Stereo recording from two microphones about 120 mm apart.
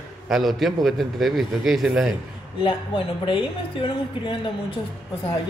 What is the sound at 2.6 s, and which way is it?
A woman's voice, 45° left (ahead or behind).